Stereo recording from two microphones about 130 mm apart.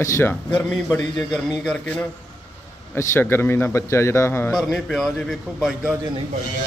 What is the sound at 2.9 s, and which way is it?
A man's voice, 20° left (ahead or behind).